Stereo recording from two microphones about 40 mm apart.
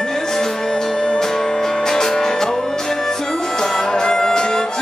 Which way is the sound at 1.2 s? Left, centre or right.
Centre.